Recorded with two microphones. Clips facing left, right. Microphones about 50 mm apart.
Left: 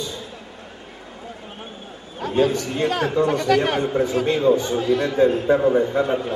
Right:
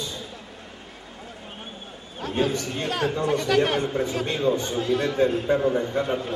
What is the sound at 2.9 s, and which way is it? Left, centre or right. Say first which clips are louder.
Speech: left 3 dB; centre.